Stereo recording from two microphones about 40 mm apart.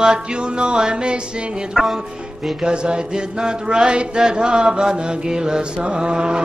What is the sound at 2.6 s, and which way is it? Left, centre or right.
Mantra, right.